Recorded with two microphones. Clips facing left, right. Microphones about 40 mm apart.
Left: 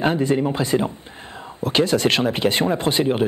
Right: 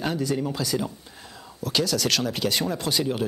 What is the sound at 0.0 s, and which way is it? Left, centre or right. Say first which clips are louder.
Speech: left 7 dB; left.